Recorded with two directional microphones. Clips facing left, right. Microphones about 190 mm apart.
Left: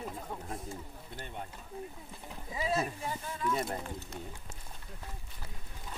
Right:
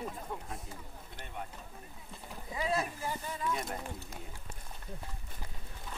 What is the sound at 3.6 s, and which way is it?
Speech, 30° left (ahead or behind).